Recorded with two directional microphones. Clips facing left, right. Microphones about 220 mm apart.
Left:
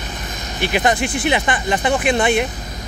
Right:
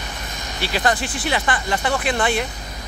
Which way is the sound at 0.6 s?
20° left (ahead or behind).